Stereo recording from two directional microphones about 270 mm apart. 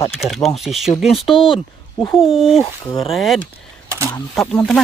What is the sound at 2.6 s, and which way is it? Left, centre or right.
Speech, centre.